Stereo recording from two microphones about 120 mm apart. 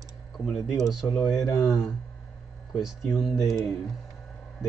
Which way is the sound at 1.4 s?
25° left (ahead or behind).